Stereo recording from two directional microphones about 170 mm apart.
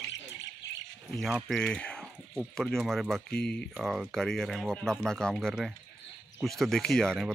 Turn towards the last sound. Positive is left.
turn(degrees=5)  # may be behind; listen again after turning